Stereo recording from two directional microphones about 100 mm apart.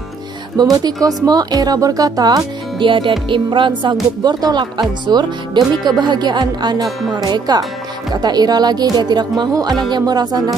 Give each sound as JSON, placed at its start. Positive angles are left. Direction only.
{"t": 0.6, "sound": "speech", "side_deg": -40}
{"t": 2.8, "sound": "music", "side_deg": -55}
{"t": 3.9, "sound": "speech", "side_deg": -40}